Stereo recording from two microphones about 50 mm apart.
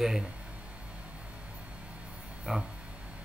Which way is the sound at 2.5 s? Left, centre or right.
Centre.